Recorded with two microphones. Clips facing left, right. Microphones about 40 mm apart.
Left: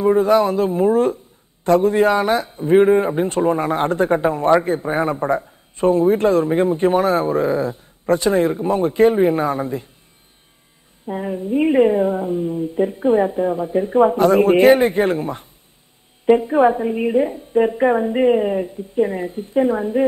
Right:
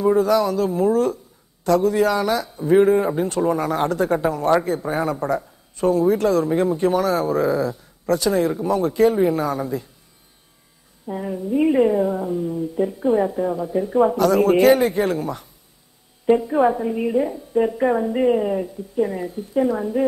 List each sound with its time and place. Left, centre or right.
0.0 s a man's voice: left
11.1 s a man's voice: left